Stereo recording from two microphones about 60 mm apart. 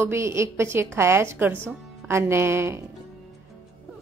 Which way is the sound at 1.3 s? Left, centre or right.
Right.